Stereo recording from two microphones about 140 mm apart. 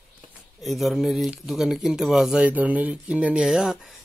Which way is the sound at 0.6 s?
Centre (ahead or behind).